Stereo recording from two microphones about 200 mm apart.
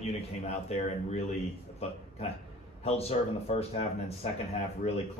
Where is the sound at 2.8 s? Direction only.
30° left (ahead or behind).